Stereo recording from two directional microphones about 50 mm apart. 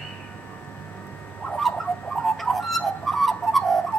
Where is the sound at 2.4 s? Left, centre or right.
Centre.